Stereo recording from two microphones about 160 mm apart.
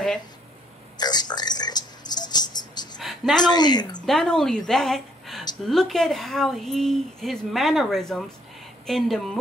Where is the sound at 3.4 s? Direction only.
25° left (ahead or behind).